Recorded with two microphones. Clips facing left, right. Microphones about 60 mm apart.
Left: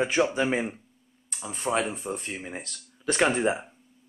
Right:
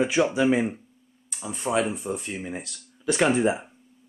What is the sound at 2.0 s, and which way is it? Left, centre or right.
Speech, left.